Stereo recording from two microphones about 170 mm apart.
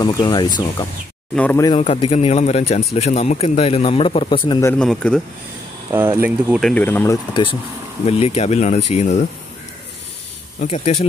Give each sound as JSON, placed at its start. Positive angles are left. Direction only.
{"t": 0.0, "sound": "speech", "side_deg": 25}
{"t": 1.3, "sound": "speech", "side_deg": 10}
{"t": 1.8, "sound": "a man's voice", "side_deg": 35}
{"t": 4.6, "sound": "speech", "side_deg": 5}
{"t": 5.9, "sound": "speech", "side_deg": -15}
{"t": 6.6, "sound": "speech", "side_deg": 10}
{"t": 8.0, "sound": "a man's voice", "side_deg": 35}
{"t": 10.7, "sound": "a man's voice", "side_deg": 40}